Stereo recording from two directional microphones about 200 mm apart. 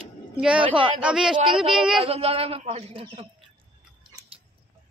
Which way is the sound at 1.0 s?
5° right (ahead or behind).